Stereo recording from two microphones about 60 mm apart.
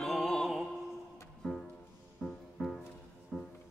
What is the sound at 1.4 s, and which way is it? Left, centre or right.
Music, centre.